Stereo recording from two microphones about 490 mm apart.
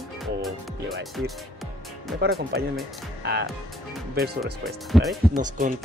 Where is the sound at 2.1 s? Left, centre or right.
Centre.